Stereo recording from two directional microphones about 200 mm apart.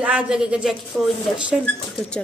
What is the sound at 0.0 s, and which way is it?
Speech, 5° right (ahead or behind).